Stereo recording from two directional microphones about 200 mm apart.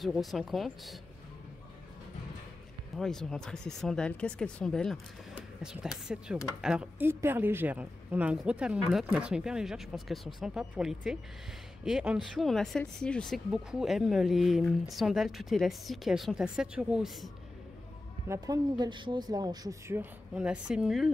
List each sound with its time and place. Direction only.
0.0 s speech: centre (ahead or behind)
3.0 s speech: centre (ahead or behind)
18.3 s speech: 20° right (ahead or behind); by 21.1 s centre (ahead or behind)